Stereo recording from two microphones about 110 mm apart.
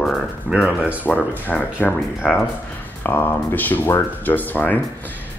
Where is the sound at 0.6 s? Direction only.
15° right (ahead or behind).